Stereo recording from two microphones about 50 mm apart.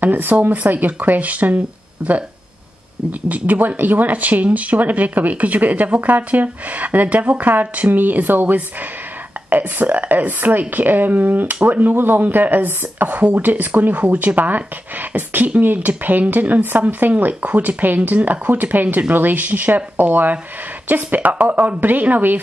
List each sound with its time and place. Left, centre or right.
0.0 s speech: right